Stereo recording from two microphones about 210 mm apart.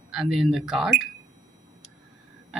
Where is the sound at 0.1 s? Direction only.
Centre (ahead or behind).